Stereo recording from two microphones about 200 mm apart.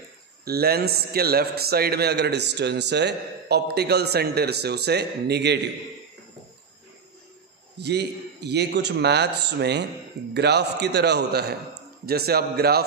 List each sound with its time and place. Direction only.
0.5 s a man's voice: 50° right (ahead or behind)
7.8 s a man's voice: 55° right (ahead or behind)